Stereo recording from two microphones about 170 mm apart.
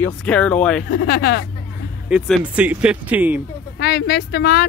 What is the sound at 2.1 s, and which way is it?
Speech, 5° right (ahead or behind).